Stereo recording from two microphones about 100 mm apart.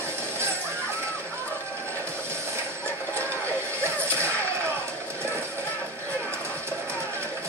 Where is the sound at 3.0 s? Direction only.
25° right (ahead or behind).